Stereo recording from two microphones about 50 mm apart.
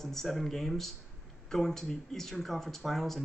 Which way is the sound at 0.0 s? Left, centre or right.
Centre.